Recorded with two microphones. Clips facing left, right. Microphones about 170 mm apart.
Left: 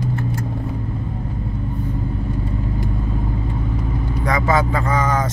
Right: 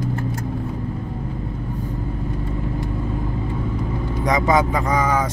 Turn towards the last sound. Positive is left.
turn(degrees=-10)  # may be behind; listen again after turning